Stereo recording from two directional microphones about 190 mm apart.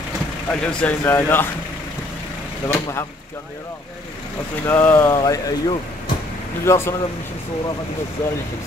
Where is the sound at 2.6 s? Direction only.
15° left (ahead or behind).